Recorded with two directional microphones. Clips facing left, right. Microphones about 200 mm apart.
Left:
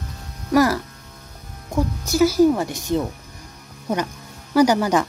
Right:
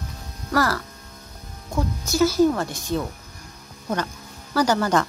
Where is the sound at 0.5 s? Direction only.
15° left (ahead or behind).